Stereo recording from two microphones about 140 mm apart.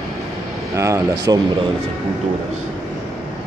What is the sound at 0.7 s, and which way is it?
Speech, 20° right (ahead or behind).